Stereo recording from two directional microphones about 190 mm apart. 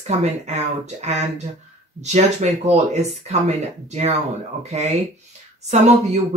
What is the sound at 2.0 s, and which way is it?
Speech, 35° right (ahead or behind).